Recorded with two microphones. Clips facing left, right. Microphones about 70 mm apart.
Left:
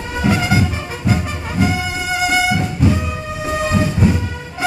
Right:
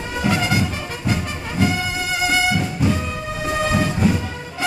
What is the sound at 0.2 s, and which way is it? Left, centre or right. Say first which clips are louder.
Music: left 3 dB; centre.